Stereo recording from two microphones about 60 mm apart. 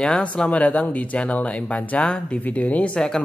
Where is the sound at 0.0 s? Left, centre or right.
Centre.